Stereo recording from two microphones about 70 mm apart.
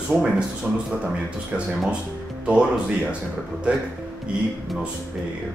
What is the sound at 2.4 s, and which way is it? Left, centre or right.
Speech, centre.